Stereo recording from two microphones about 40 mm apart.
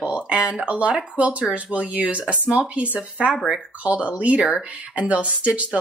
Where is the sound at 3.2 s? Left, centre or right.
Centre.